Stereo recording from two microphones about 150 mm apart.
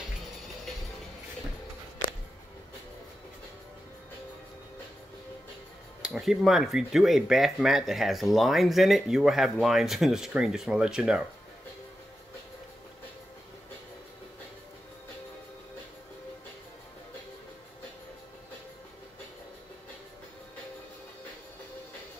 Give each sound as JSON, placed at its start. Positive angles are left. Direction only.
{"t": 6.0, "sound": "speech", "side_deg": -5}